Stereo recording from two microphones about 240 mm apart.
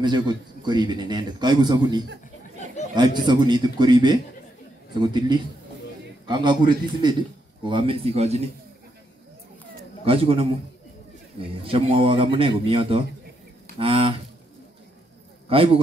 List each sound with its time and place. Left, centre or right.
0.0 s a man's voice: centre
10.0 s a man's voice: right
11.6 s a man's voice: right
15.4 s a man's voice: right